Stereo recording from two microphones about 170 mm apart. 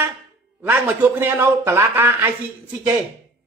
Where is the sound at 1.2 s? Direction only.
15° right (ahead or behind).